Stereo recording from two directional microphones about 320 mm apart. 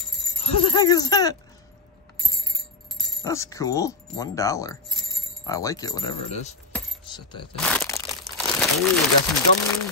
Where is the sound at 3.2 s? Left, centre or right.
Centre.